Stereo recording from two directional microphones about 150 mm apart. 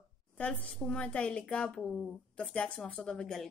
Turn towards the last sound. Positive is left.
turn(degrees=5)  # may be behind; listen again after turning